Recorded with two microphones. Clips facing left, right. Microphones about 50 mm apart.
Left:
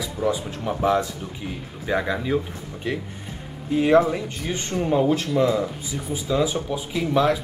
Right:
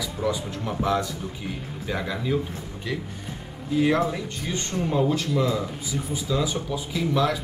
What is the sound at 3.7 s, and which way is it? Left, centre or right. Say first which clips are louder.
A man's voice: left 4 dB; left.